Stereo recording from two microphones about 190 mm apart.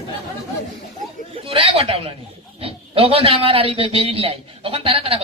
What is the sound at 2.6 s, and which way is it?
A man's voice, 30° right (ahead or behind).